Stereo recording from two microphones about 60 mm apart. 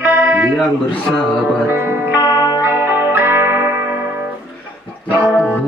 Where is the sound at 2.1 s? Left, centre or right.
Left.